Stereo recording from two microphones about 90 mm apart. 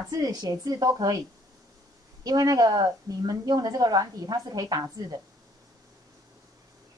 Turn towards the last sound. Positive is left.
turn(degrees=-45)  # may be behind; listen again after turning